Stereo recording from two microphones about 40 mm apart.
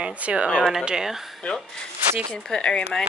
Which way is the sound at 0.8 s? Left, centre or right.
Centre.